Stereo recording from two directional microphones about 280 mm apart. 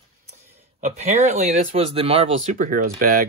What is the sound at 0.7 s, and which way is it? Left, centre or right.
Speech, right.